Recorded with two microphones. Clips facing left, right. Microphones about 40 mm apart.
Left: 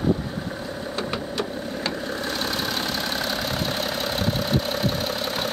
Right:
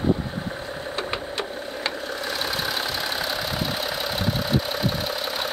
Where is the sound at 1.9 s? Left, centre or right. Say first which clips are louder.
Left 1 dB; centre.